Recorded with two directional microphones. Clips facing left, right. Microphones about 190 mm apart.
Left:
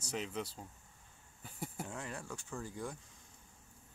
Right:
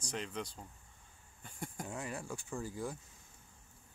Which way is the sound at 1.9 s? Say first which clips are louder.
Right 2 dB; 10° right (ahead or behind).